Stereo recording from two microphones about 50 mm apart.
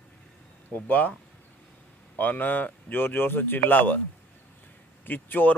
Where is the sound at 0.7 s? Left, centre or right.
Left.